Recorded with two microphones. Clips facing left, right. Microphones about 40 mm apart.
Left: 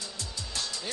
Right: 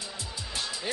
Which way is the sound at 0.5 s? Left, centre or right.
Centre.